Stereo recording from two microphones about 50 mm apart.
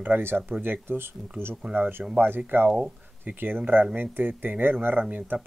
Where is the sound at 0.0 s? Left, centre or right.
Right.